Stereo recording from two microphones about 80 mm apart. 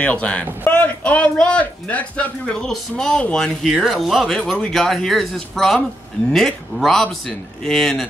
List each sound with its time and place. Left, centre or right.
0.0 s a man's voice: centre